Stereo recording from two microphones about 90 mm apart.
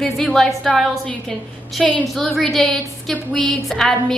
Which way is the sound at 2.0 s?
5° left (ahead or behind).